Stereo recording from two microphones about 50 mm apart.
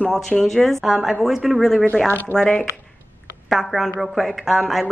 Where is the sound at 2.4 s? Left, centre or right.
Centre.